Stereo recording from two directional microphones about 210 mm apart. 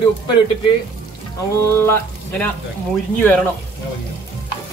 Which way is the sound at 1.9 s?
5° left (ahead or behind).